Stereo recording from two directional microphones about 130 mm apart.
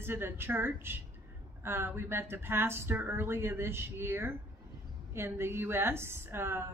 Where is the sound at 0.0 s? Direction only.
20° right (ahead or behind).